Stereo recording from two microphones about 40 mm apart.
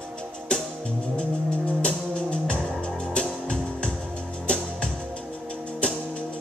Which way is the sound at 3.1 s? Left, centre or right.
Left.